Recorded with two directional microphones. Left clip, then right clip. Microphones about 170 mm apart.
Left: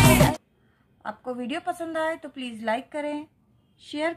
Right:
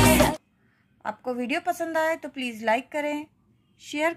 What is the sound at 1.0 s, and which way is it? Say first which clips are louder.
A woman's voice: right 3 dB; 25° right (ahead or behind).